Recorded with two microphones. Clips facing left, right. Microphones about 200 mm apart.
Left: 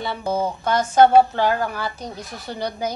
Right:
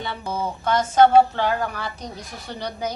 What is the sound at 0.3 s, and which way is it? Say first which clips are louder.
Speech: left 2 dB; 10° left (ahead or behind).